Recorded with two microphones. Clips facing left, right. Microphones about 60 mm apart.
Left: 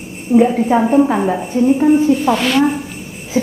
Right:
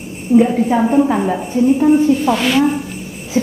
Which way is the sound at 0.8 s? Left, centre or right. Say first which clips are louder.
Left 1 dB; centre.